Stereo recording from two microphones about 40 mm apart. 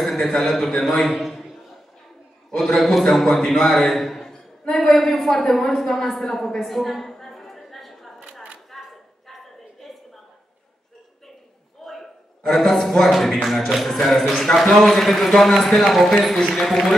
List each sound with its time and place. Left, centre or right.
0.0 s a man's voice: centre
2.5 s a man's voice: centre
8.7 s a sound: centre
11.8 s a man's voice: centre
16.3 s a man's voice: centre
16.6 s a man's voice: centre